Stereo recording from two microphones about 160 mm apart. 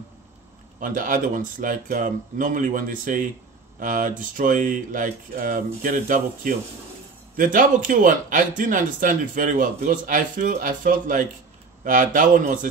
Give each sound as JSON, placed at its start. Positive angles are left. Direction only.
{"t": 0.7, "sound": "a man's voice", "side_deg": -55}